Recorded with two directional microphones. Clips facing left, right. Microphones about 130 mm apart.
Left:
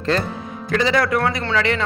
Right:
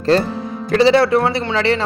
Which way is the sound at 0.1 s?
35° right (ahead or behind).